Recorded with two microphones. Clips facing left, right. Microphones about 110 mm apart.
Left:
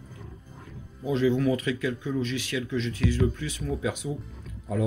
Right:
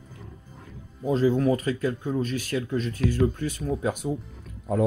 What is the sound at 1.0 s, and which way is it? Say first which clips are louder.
Speech: right 2 dB; 40° right (ahead or behind).